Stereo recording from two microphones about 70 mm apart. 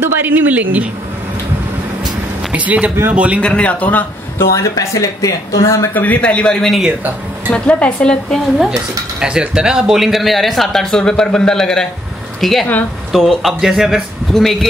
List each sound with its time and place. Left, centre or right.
0.0 s speech: right
2.5 s speech: centre
3.3 s a woman's voice: centre
4.4 s speech: left
5.9 s a woman's voice: left
9.2 s speech: centre
14.3 s speech: centre